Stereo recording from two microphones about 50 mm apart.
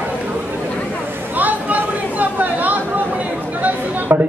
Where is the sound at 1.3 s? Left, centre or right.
Right.